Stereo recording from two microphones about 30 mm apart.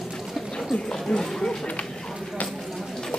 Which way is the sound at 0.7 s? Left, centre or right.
Left.